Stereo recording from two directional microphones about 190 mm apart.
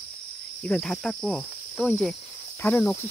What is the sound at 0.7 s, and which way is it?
Cricket, 5° left (ahead or behind).